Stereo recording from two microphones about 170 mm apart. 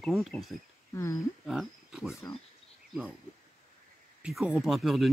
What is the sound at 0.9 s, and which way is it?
Speech, 15° left (ahead or behind).